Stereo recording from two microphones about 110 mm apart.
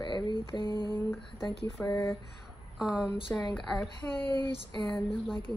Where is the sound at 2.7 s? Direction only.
5° right (ahead or behind).